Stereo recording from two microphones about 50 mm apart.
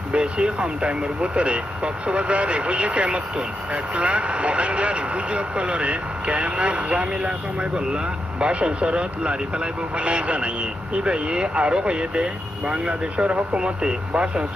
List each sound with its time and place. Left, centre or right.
0.1 s speech: right